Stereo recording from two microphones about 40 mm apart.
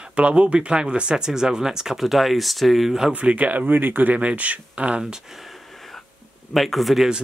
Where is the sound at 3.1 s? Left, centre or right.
Right.